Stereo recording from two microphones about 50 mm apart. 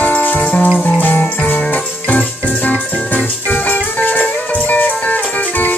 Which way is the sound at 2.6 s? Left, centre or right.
Left.